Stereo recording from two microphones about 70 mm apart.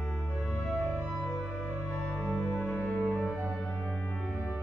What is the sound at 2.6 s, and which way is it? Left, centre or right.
Music, left.